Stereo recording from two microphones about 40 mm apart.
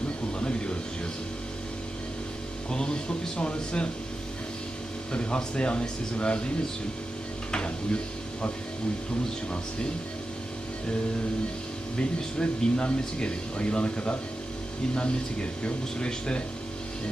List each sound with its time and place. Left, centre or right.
0.4 s a sound: left
2.7 s speech: left
5.1 s speech: left
7.5 s a sound: left
12.0 s speech: left
15.6 s speech: left